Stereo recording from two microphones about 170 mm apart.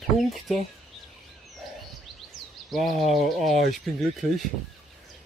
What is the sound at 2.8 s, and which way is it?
Speech, 55° right (ahead or behind).